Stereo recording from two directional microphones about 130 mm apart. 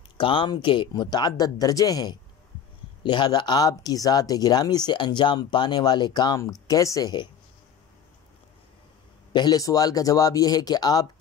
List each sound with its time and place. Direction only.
0.2 s speech: 40° left (ahead or behind)
9.3 s speech: 30° left (ahead or behind)